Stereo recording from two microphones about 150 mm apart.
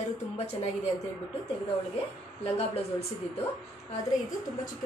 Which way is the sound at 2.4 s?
40° left (ahead or behind).